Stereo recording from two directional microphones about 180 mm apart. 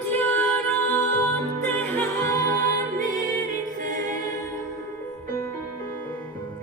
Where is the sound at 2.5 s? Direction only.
45° right (ahead or behind).